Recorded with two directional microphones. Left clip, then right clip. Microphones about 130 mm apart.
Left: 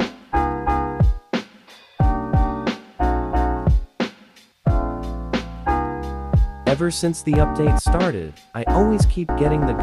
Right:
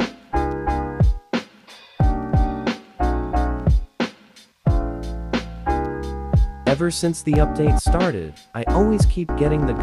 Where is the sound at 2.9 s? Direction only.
15° left (ahead or behind).